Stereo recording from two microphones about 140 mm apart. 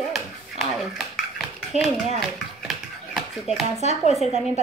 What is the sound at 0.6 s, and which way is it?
Speech, centre (ahead or behind).